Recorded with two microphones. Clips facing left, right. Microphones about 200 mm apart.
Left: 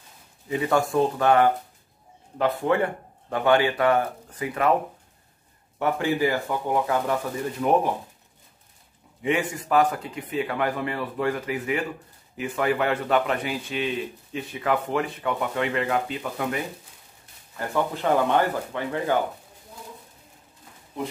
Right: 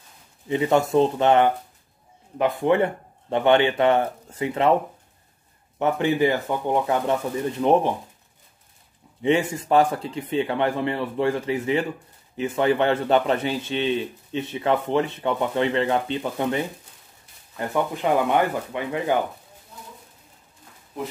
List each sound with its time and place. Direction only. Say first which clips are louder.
0.5 s a man's voice: right 3 dB; 25° right (ahead or behind)
2.6 s a man's voice: right 3 dB; 20° right (ahead or behind)
5.8 s a man's voice: right 3 dB; 20° right (ahead or behind)
9.2 s a man's voice: right 4 dB; 30° right (ahead or behind)
17.6 s speech: right 1 dB; 15° right (ahead or behind)